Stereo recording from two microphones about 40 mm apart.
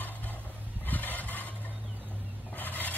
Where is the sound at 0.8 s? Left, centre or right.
Left.